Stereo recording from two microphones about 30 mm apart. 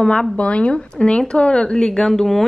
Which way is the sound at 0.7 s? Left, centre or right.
Left.